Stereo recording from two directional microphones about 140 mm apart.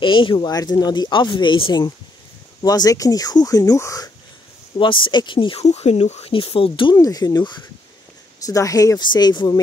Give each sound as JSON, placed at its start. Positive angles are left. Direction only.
{"t": 0.0, "sound": "speech", "side_deg": 35}
{"t": 4.7, "sound": "speech", "side_deg": 35}
{"t": 5.6, "sound": "speech", "side_deg": 50}